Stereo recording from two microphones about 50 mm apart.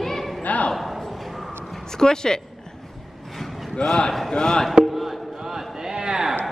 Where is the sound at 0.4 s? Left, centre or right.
Left.